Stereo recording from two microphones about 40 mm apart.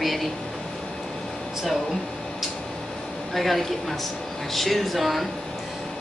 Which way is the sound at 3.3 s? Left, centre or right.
Centre.